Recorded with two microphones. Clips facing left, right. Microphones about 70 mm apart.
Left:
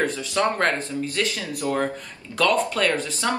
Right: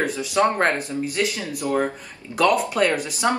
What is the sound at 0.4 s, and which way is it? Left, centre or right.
Speech, right.